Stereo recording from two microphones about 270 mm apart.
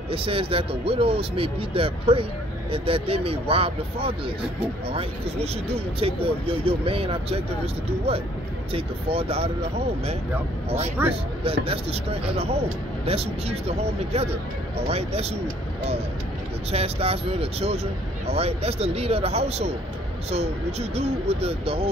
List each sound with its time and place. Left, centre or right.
0.1 s speech: right
11.6 s speech: right